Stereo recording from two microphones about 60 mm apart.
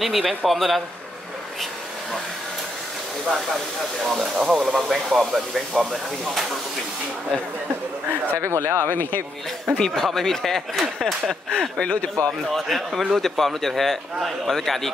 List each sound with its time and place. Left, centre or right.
0.0 s a man's voice: centre
4.4 s a man's voice: centre
8.4 s speech: right
9.8 s speech: centre
12.3 s a man's voice: centre